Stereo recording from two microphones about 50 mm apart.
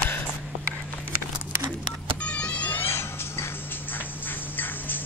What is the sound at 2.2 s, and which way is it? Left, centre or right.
Power windows, left.